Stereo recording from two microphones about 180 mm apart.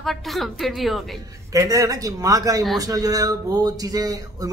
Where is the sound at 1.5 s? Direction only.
20° right (ahead or behind).